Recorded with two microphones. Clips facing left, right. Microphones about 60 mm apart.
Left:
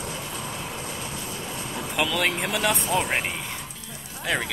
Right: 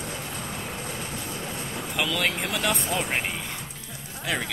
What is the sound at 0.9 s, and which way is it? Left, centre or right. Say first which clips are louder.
Vehicle: even; right.